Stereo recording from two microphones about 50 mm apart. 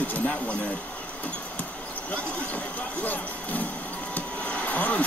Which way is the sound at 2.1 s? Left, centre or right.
Left.